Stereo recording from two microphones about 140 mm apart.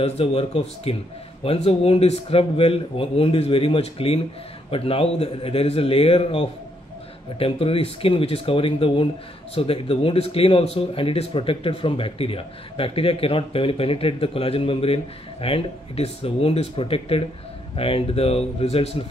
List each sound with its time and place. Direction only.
0.0 s speech: 45° left (ahead or behind)